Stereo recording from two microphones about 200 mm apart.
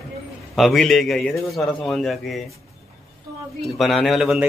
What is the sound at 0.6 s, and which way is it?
A man's voice, centre (ahead or behind).